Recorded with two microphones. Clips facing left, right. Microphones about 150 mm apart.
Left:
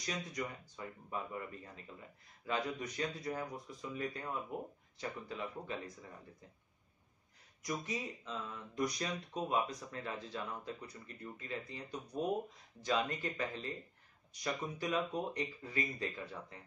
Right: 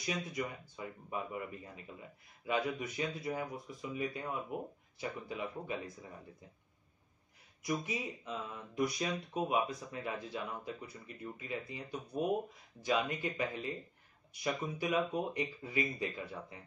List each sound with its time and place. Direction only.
0.0 s speech: 10° right (ahead or behind)
7.6 s speech: 10° right (ahead or behind)